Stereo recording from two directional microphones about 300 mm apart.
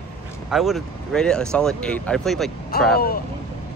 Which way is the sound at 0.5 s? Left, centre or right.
Centre.